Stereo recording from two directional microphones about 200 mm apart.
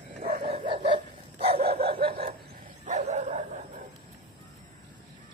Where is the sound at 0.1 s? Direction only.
40° right (ahead or behind).